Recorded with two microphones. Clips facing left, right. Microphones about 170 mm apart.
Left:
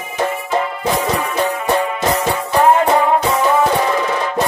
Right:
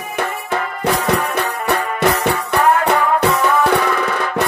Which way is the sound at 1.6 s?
65° right (ahead or behind).